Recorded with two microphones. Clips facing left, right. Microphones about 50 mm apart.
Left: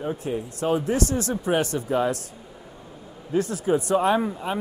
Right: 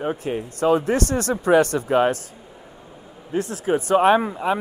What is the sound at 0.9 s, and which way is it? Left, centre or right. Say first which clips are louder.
A man's voice: right 3 dB; right.